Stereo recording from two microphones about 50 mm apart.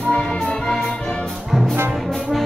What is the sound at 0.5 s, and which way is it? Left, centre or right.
Music, centre.